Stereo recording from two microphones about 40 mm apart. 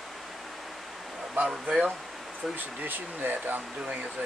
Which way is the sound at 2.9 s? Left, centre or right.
Right.